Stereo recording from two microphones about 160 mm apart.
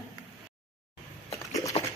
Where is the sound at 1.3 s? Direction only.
20° left (ahead or behind).